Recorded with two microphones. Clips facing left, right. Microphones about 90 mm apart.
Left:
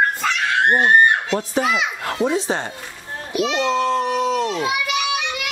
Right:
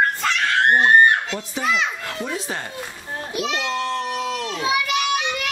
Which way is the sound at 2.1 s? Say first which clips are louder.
Left 11 dB; 25° left (ahead or behind).